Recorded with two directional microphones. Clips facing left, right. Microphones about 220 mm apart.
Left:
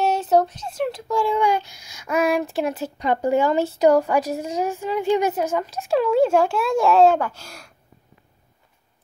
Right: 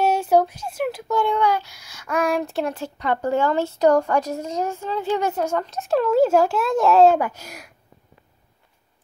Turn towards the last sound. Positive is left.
turn(degrees=-15)  # may be behind; listen again after turning